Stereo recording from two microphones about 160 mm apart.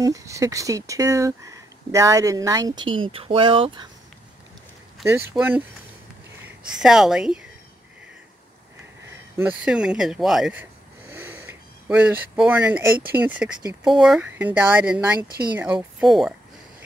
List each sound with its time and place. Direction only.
0.0 s speech: 20° right (ahead or behind)
5.0 s speech: centre (ahead or behind)
6.8 s speech: 5° right (ahead or behind)
9.4 s speech: 5° right (ahead or behind)